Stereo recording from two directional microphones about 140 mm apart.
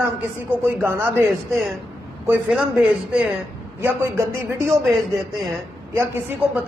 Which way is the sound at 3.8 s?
15° right (ahead or behind).